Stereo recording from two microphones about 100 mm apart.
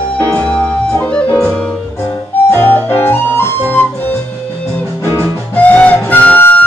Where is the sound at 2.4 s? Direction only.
20° left (ahead or behind).